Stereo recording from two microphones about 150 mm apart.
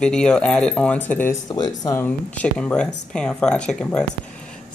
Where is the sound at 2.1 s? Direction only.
10° left (ahead or behind).